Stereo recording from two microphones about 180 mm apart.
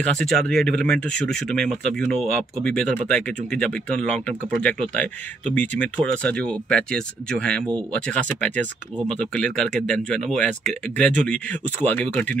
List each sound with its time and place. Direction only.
0.0 s speech: centre (ahead or behind)